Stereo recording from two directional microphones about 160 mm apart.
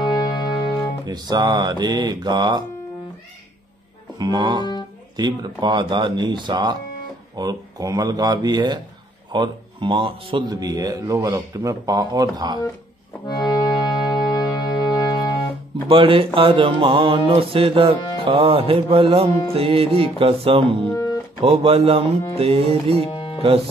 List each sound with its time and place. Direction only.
0.0 s music: 25° left (ahead or behind)
1.0 s speech: 25° right (ahead or behind)
4.2 s speech: 25° right (ahead or behind)
13.3 s music: 25° left (ahead or behind)
15.9 s music: 35° right (ahead or behind)
20.9 s music: 20° left (ahead or behind)
21.4 s music: 35° right (ahead or behind)
23.1 s music: 35° left (ahead or behind)